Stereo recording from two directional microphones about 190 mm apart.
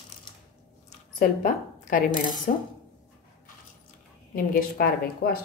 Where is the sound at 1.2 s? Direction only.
45° left (ahead or behind).